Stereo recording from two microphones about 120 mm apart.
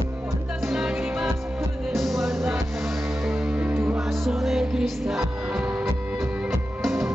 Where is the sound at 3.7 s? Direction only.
20° right (ahead or behind).